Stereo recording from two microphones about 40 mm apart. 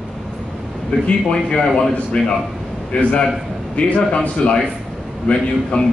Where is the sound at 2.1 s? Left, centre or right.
Left.